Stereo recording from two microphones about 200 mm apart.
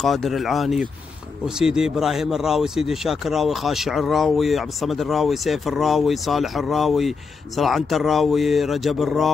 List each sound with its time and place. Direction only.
0.0 s speech: centre (ahead or behind)